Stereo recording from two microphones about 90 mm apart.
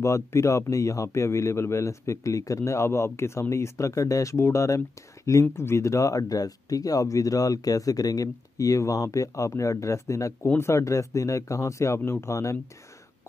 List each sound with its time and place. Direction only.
0.0 s a man's voice: 30° left (ahead or behind)